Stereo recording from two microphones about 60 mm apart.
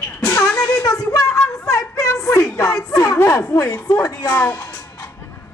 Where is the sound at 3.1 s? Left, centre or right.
Left.